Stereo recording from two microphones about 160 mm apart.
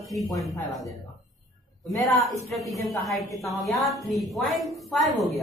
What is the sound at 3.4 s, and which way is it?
A woman's voice, centre (ahead or behind).